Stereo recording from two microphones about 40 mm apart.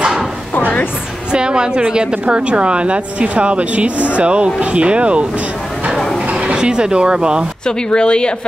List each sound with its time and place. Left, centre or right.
0.6 s music: left
1.3 s a woman's voice: right
6.4 s speech: right
7.6 s speech: left